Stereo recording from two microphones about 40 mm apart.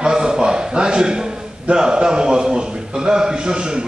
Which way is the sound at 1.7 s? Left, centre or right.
Centre.